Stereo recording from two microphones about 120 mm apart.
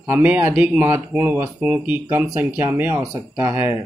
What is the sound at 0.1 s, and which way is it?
Speech, 10° right (ahead or behind).